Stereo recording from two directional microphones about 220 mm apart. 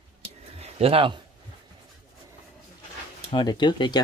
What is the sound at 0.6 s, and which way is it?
Speech, 25° right (ahead or behind).